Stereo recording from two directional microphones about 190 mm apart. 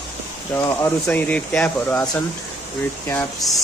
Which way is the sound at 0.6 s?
15° left (ahead or behind).